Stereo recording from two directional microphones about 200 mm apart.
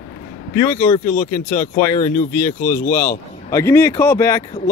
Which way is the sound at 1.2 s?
45° left (ahead or behind).